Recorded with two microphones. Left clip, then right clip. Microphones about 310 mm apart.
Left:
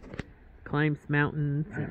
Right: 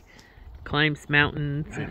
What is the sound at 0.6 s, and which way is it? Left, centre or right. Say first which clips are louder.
Speech: right 6 dB; centre.